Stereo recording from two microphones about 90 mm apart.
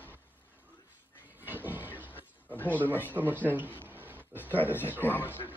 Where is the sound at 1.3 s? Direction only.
20° right (ahead or behind).